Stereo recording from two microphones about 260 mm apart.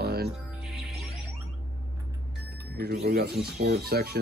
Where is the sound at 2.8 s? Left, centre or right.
Right.